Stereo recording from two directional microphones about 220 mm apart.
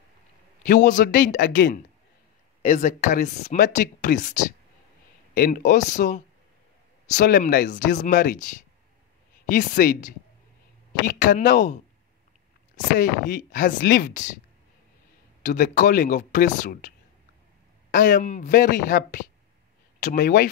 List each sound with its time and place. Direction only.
0.7 s speech: 35° left (ahead or behind)
9.5 s speech: 35° left (ahead or behind)
13.0 s speech: 40° left (ahead or behind)
15.4 s speech: 35° left (ahead or behind)
17.9 s speech: 35° left (ahead or behind)